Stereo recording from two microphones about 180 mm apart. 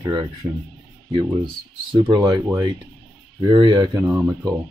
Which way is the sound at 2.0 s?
25° right (ahead or behind).